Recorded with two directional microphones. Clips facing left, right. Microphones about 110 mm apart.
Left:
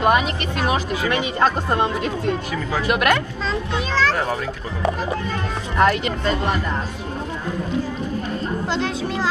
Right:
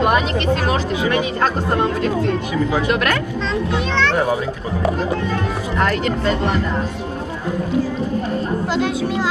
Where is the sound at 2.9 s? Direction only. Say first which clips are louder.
Even; 10° left (ahead or behind).